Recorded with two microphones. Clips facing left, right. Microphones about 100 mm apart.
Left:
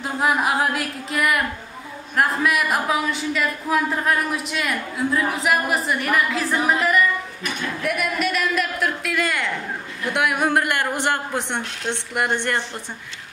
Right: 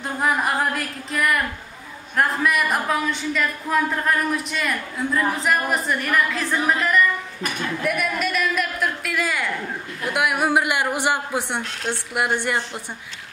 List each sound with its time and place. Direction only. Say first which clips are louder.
0.0 s a woman's voice: left 1 dB; 5° left (ahead or behind)